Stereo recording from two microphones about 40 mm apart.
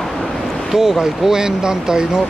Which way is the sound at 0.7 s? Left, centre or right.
Centre.